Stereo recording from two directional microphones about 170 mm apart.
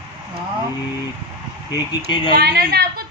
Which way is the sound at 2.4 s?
70° right (ahead or behind).